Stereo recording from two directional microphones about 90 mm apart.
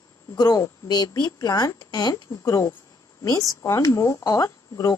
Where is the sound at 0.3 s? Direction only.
40° left (ahead or behind).